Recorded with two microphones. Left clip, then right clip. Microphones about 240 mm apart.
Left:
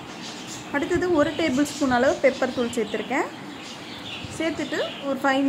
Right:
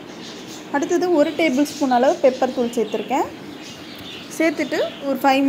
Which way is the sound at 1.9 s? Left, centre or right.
Centre.